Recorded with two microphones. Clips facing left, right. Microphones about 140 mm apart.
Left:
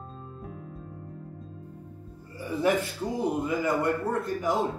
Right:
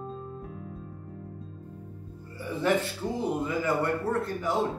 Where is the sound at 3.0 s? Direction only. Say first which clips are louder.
Left 1 dB; 15° left (ahead or behind).